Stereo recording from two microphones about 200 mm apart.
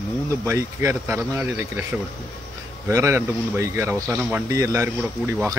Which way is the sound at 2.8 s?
15° right (ahead or behind).